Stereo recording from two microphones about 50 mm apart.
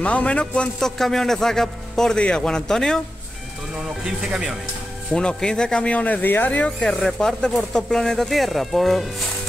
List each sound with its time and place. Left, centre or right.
0.0 s speech: left
0.7 s a man's voice: centre
4.3 s speech: centre
5.1 s speech: centre; by 6.7 s left
6.8 s a man's voice: centre